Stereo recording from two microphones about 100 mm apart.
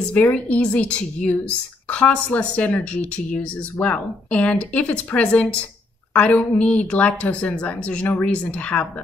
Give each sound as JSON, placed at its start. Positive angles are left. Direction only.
{"t": 0.1, "sound": "speech", "side_deg": 15}